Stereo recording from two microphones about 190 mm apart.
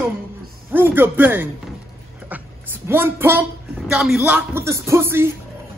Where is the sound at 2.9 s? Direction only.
10° right (ahead or behind).